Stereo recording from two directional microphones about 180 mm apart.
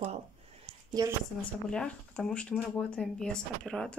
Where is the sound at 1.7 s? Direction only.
5° left (ahead or behind).